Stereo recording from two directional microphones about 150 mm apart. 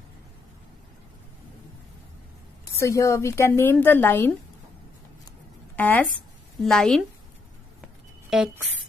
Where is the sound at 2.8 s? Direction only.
20° left (ahead or behind).